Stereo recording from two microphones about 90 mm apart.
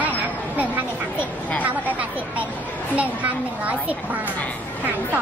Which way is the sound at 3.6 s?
15° right (ahead or behind).